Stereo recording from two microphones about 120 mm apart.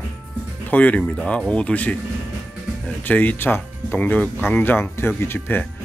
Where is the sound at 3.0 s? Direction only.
15° left (ahead or behind).